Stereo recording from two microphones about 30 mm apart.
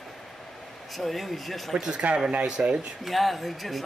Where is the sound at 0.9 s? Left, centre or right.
Centre.